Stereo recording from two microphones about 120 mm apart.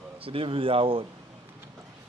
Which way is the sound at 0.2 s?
50° right (ahead or behind).